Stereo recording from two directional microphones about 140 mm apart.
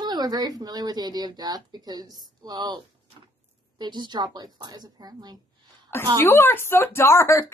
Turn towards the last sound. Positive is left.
turn(degrees=20)  # may be behind; listen again after turning